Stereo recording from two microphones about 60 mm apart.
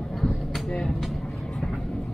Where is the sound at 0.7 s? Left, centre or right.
Centre.